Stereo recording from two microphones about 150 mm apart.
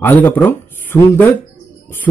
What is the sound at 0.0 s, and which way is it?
A man's voice, 10° left (ahead or behind).